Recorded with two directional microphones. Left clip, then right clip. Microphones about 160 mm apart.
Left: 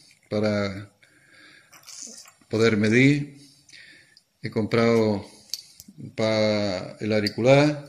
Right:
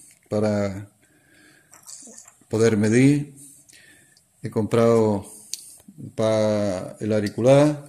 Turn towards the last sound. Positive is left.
turn(degrees=-40)  # may be behind; listen again after turning